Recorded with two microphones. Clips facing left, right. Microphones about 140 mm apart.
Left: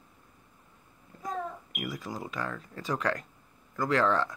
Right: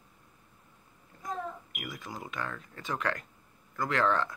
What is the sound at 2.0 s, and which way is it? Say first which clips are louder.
Speech: left 3 dB; 35° left (ahead or behind).